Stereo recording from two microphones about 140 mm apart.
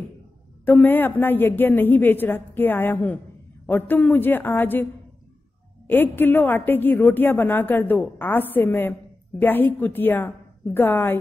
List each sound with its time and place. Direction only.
0.7 s a woman's voice: 15° left (ahead or behind)
5.9 s a woman's voice: 15° left (ahead or behind)